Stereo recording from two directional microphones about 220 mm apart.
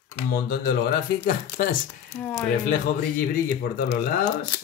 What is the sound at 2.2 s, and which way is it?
Speech, 10° left (ahead or behind).